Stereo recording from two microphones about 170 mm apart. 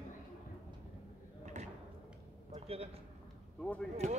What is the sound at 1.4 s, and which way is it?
Drawer open or close, 45° right (ahead or behind).